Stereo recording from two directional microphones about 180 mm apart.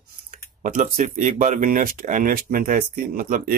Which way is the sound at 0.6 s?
45° right (ahead or behind).